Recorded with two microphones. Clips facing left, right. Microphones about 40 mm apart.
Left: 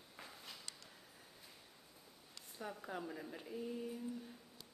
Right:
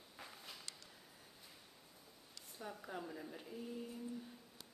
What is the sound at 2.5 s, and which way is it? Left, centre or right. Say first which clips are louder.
Speech: left 2 dB; centre.